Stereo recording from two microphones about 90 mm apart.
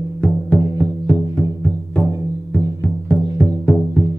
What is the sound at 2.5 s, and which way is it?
Music, 15° left (ahead or behind).